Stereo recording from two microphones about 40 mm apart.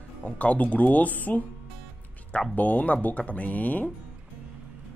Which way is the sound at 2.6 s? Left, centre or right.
Left.